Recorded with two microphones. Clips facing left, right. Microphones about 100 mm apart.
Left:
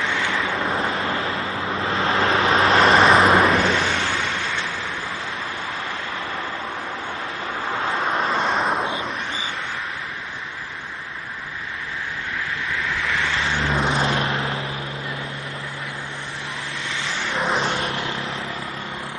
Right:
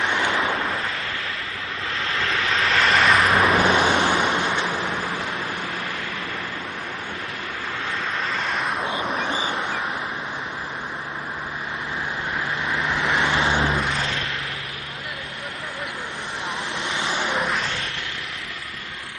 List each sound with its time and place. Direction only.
0.0 s waves: 20° right (ahead or behind)
0.6 s vehicle: 30° left (ahead or behind)
3.6 s vehicle: 15° right (ahead or behind)
8.0 s vehicle: 30° left (ahead or behind)
9.1 s a sound: 15° right (ahead or behind)
12.6 s vehicle: 20° right (ahead or behind)
13.7 s vehicle: 30° left (ahead or behind)
16.9 s vehicle: 15° right (ahead or behind)
17.5 s vehicle: 30° left (ahead or behind)